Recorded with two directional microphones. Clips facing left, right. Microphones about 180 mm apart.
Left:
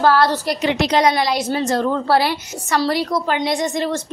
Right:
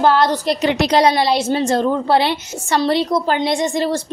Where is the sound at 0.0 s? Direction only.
20° right (ahead or behind).